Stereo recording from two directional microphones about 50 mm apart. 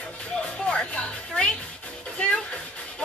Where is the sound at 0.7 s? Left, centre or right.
Centre.